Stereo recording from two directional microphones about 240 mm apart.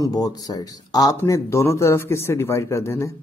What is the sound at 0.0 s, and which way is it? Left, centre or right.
Speech, centre.